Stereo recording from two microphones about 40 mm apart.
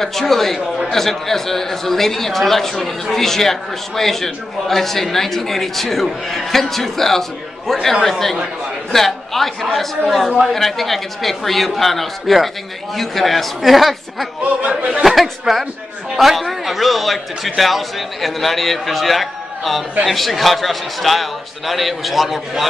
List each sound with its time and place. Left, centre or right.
0.0 s a man's voice: centre
14.4 s a man's voice: right
15.0 s a man's voice: centre